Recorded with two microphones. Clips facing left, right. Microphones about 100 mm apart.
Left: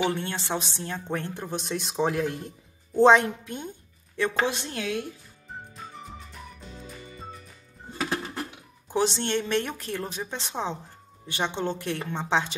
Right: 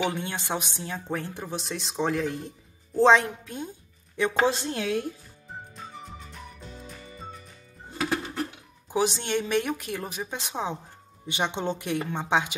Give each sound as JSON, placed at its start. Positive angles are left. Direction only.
{"t": 0.1, "sound": "speech", "side_deg": -15}
{"t": 4.2, "sound": "a woman's voice", "side_deg": -25}
{"t": 6.7, "sound": "music", "side_deg": 0}
{"t": 8.8, "sound": "a woman's voice", "side_deg": -10}
{"t": 11.2, "sound": "a woman's voice", "side_deg": -15}